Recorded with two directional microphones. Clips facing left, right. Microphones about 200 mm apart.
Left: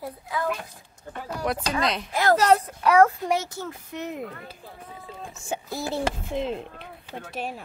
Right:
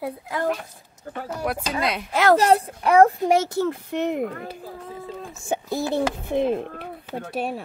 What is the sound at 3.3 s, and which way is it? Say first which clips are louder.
Speech: right 8 dB; 65° right (ahead or behind).